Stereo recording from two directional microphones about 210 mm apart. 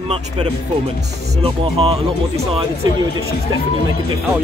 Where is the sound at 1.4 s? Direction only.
30° right (ahead or behind).